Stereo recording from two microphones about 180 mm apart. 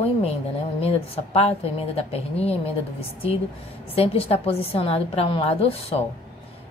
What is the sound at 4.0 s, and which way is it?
A woman's voice, 35° left (ahead or behind).